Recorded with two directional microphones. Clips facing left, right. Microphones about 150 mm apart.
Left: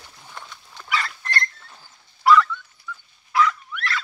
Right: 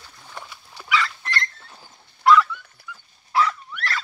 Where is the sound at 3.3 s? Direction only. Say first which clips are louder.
Left 1 dB; 35° right (ahead or behind).